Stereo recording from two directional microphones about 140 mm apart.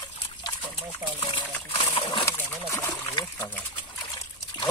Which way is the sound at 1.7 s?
40° left (ahead or behind).